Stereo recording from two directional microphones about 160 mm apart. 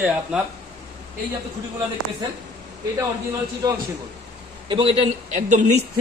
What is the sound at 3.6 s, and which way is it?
Speech, 25° right (ahead or behind).